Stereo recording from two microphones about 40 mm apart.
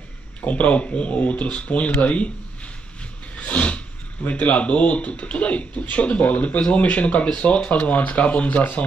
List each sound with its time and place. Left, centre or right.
0.4 s speech: left
3.3 s a sound: left
4.3 s speech: left